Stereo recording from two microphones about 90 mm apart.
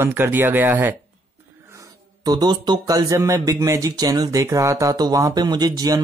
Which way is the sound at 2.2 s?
50° right (ahead or behind).